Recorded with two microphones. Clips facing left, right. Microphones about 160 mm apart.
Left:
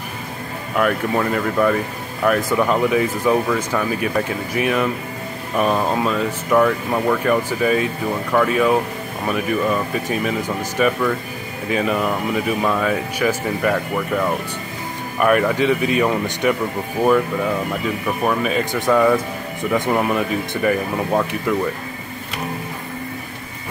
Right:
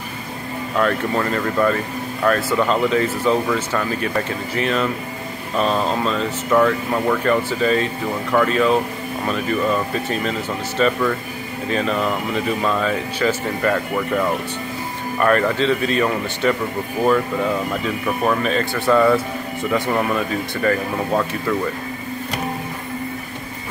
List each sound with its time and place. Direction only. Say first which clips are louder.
0.7 s speech: left 1 dB; 10° left (ahead or behind)
18.2 s speech: even; 5° left (ahead or behind)